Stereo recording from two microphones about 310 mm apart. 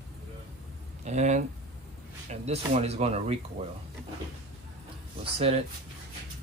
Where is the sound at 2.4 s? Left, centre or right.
Right.